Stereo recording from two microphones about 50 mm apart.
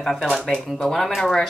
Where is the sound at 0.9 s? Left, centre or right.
Centre.